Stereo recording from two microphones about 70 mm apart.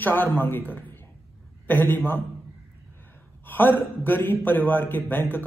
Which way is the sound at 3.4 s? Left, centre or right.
Left.